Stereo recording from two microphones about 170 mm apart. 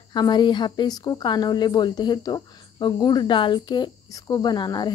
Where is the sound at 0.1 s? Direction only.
25° left (ahead or behind).